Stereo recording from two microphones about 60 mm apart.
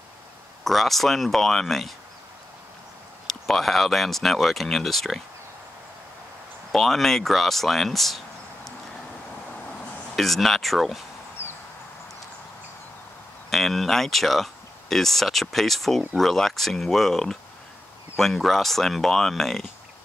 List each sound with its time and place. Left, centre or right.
0.7 s speech: centre
3.3 s speech: centre
6.7 s speech: centre
10.1 s speech: centre
11.4 s a sound: left
13.5 s speech: centre